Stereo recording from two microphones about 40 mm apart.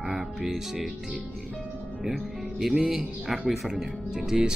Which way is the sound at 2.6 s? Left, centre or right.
Centre.